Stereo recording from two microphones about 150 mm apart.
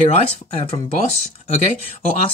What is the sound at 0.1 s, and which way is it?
Speech, 40° left (ahead or behind).